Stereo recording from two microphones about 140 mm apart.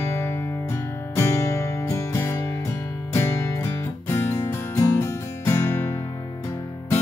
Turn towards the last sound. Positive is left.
turn(degrees=20)  # may be behind; listen again after turning